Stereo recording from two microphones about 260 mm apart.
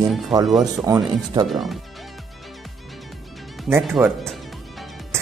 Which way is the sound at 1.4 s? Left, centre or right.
Centre.